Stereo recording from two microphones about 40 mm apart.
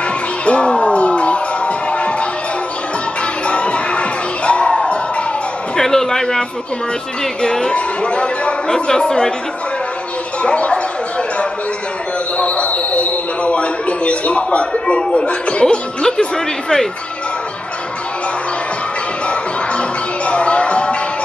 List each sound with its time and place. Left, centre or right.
0.5 s music: left
3.4 s music: left
4.5 s a sound: left
5.8 s a man's voice: centre
7.6 s speech: left
10.4 s speech: left
12.4 s a man's voice: left
20.2 s a sound: left